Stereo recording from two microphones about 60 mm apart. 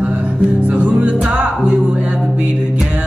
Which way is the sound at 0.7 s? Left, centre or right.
Right.